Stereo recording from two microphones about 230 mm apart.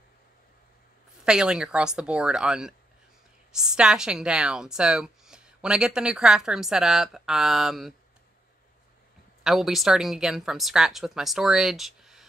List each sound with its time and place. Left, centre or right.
1.2 s a woman's voice: centre
9.4 s a woman's voice: centre